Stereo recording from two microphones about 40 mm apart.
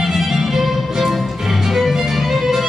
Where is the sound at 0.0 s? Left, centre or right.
Centre.